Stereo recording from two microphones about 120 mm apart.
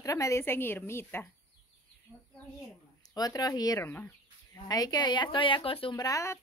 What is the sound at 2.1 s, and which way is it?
Speech, 15° right (ahead or behind).